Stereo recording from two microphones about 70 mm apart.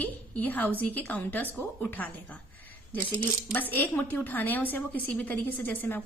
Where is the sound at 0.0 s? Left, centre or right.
Left.